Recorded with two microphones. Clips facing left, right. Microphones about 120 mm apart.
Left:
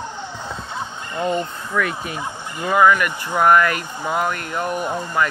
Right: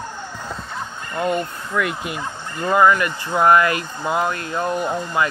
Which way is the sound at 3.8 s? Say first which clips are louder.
Right 1 dB; 15° left (ahead or behind).